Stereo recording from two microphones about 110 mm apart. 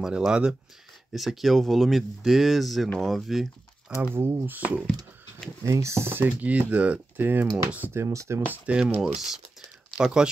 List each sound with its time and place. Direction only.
0.0 s speech: 10° right (ahead or behind)
4.0 s speech: 25° right (ahead or behind)
5.7 s speech: 25° right (ahead or behind)
8.5 s speech: 10° right (ahead or behind)